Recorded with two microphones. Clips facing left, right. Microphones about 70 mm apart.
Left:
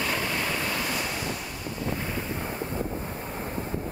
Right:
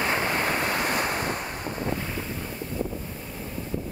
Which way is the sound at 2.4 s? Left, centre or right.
Left.